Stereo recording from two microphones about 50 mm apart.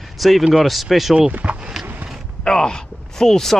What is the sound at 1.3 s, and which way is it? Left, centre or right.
Speech, right.